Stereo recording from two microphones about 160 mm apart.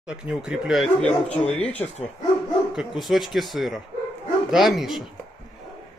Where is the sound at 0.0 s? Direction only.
5° right (ahead or behind); by 1.9 s 10° left (ahead or behind).